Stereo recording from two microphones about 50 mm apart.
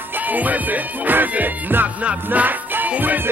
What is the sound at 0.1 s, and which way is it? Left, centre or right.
Music, right.